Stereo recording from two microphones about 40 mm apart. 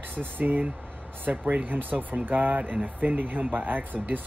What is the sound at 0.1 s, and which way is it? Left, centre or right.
Speech, right.